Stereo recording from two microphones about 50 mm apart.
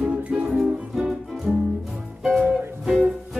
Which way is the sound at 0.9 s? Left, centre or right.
Centre.